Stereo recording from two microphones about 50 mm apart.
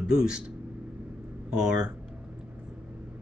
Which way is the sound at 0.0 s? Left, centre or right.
Centre.